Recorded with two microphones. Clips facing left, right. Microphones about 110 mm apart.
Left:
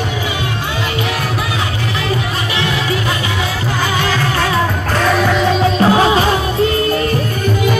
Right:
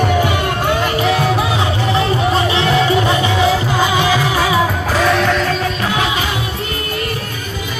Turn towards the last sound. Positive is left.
turn(degrees=35)  # may be behind; listen again after turning